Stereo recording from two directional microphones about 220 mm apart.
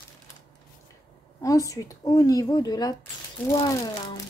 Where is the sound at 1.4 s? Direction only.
15° left (ahead or behind).